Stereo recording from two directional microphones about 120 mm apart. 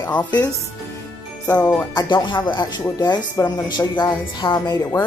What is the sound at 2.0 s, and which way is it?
Speech, 40° left (ahead or behind).